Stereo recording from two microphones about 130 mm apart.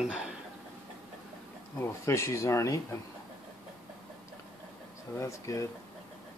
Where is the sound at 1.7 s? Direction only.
20° left (ahead or behind).